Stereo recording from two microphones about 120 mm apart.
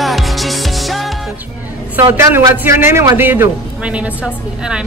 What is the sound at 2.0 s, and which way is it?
A man's voice, 20° right (ahead or behind).